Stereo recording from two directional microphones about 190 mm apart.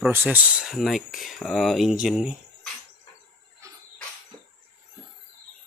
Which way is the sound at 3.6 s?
15° right (ahead or behind).